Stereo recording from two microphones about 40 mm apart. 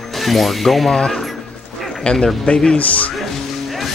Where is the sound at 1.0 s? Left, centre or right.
Centre.